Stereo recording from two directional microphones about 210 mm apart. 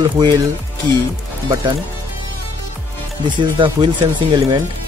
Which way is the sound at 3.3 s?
20° right (ahead or behind).